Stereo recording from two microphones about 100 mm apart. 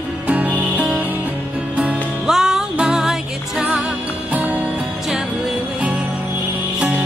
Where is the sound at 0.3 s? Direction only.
15° right (ahead or behind).